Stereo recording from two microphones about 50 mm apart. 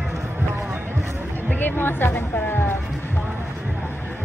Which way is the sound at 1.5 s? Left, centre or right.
Left.